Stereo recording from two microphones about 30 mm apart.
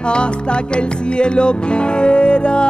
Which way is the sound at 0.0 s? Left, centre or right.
Left.